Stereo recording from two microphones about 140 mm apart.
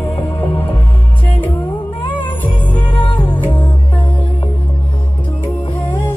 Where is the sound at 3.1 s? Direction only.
35° left (ahead or behind).